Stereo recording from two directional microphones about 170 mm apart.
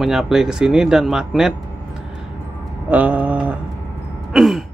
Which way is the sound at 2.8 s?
10° right (ahead or behind).